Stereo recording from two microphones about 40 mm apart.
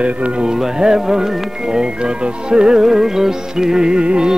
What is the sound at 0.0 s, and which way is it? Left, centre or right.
Speech, right.